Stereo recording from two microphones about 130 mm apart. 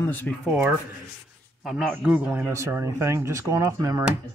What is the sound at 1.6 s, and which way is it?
Speech, 5° right (ahead or behind).